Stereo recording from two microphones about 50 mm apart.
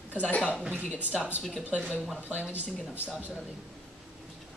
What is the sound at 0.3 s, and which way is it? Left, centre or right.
Speech, left.